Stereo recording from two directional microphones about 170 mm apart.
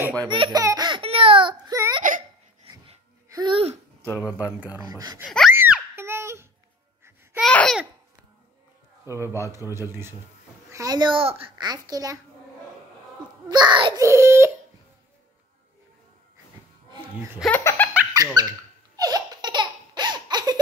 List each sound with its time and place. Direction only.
0.3 s a sound: 25° right (ahead or behind)
2.6 s dog: 30° right (ahead or behind)
3.3 s speech: 25° right (ahead or behind)
4.0 s speech: 15° left (ahead or behind)
4.8 s a child's voice: 20° right (ahead or behind)
5.5 s screaming: 15° right (ahead or behind)
7.3 s babbling: 5° left (ahead or behind)
9.0 s a child's voice: 15° right (ahead or behind)
13.5 s a child's voice: 25° right (ahead or behind)
14.0 s crying: 15° right (ahead or behind)
17.5 s speech: 10° left (ahead or behind)
18.1 s speech: 25° right (ahead or behind)
18.9 s laughter: 25° right (ahead or behind)